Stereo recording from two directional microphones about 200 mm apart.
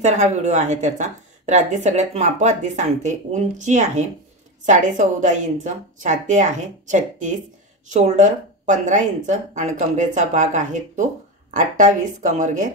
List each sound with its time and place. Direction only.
0.0 s a woman's voice: 35° right (ahead or behind)